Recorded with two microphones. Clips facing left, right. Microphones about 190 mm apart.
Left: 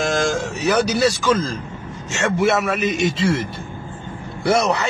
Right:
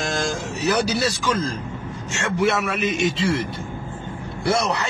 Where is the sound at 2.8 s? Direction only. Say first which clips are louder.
Left 2 dB; centre (ahead or behind).